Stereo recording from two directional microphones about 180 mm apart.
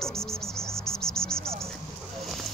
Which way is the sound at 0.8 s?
5° left (ahead or behind).